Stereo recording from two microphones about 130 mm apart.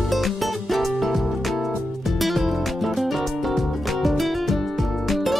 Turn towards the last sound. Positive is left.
turn(degrees=0)  # may be behind; listen again after turning